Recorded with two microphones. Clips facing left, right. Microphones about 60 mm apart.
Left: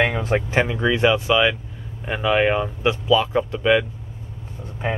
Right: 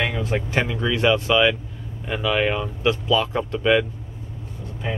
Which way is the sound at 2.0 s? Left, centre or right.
Left.